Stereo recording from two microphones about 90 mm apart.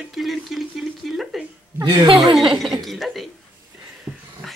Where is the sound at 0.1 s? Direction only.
Centre (ahead or behind).